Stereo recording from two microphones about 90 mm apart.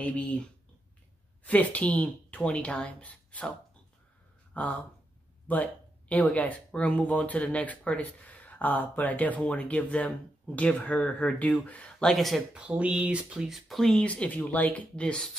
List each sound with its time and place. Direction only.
0.0 s speech: 15° left (ahead or behind)
4.6 s speech: 15° left (ahead or behind)
12.1 s speech: centre (ahead or behind)
12.5 s speech: 15° right (ahead or behind); by 15.3 s 10° left (ahead or behind)